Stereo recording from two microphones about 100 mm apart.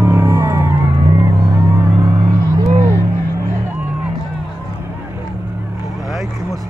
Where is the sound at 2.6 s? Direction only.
30° right (ahead or behind).